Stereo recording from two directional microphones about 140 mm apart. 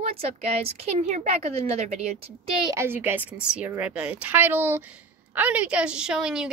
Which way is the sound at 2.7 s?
15° right (ahead or behind).